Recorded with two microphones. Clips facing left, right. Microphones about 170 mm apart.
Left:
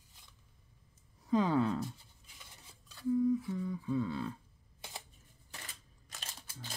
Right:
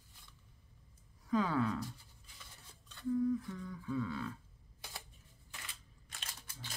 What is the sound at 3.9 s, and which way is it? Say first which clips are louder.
Speech: left 3 dB; 25° left (ahead or behind).